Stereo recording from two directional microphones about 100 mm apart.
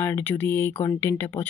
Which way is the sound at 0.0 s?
20° left (ahead or behind).